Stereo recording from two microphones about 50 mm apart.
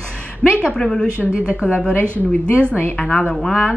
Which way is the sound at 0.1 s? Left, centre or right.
Left.